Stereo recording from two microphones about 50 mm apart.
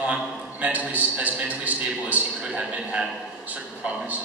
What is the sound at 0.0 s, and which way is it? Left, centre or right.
A man's voice, right.